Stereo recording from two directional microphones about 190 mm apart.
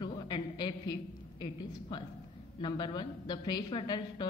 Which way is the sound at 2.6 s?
25° left (ahead or behind).